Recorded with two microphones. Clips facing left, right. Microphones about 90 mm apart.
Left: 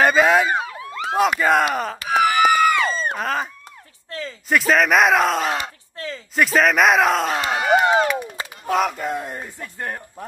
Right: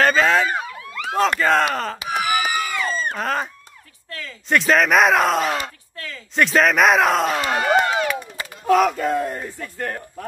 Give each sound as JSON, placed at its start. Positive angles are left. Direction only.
{"t": 0.0, "sound": "police car", "side_deg": 15}
{"t": 0.7, "sound": "police car", "side_deg": 30}
{"t": 1.1, "sound": "speech", "side_deg": 10}
{"t": 2.0, "sound": "a sound", "side_deg": 65}
{"t": 3.2, "sound": "speech", "side_deg": 0}
{"t": 4.5, "sound": "speech", "side_deg": 0}
{"t": 7.5, "sound": "speech", "side_deg": 10}
{"t": 8.6, "sound": "speech", "side_deg": 0}
{"t": 8.9, "sound": "speech", "side_deg": 15}